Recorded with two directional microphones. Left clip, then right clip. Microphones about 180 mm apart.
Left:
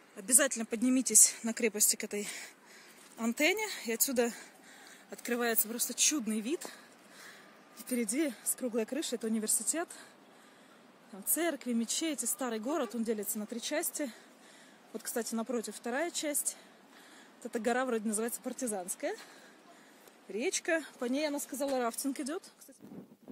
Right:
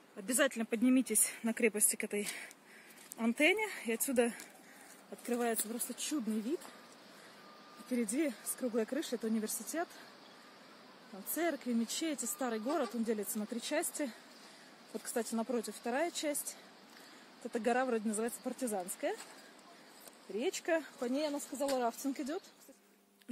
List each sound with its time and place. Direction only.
0.3 s speech: centre (ahead or behind)
7.9 s speech: 15° left (ahead or behind)
11.3 s speech: 20° left (ahead or behind)
13.4 s speech: 5° left (ahead or behind)
17.5 s speech: 15° left (ahead or behind)
18.6 s speech: 5° left (ahead or behind)
20.3 s speech: 15° left (ahead or behind)
21.0 s speech: 25° left (ahead or behind)